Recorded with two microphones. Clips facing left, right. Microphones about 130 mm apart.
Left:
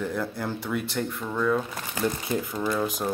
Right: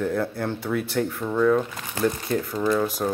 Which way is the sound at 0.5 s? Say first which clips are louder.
Right 5 dB; 5° right (ahead or behind).